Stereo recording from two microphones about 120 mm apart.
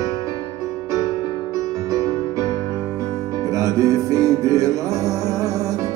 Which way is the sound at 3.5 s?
25° right (ahead or behind).